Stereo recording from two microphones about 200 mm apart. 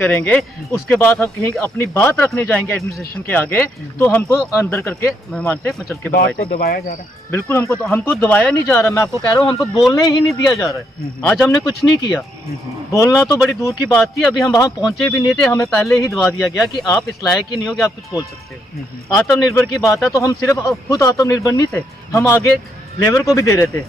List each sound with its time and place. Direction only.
0.0 s speech: 5° left (ahead or behind)
6.1 s speech: 45° left (ahead or behind)
7.2 s speech: 10° left (ahead or behind)
9.6 s speech: centre (ahead or behind)
9.9 s speech: 15° left (ahead or behind)
11.1 s speech: centre (ahead or behind)
11.4 s speech: 20° left (ahead or behind)
13.3 s speech: 5° right (ahead or behind)
13.6 s speech: 15° left (ahead or behind)
14.0 s speech: centre (ahead or behind)
14.4 s speech: 15° left (ahead or behind)
14.9 s speech: centre (ahead or behind)
19.0 s speech: 5° left (ahead or behind)